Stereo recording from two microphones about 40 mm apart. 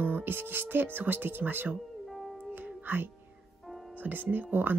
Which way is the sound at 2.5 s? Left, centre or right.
Right.